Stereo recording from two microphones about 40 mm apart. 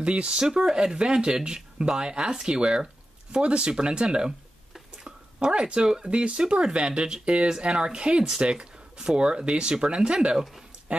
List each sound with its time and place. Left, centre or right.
0.0 s speech: right
0.3 s speech: centre
4.9 s a sound: centre
6.0 s speech: right
10.3 s speech: centre
10.9 s speech: right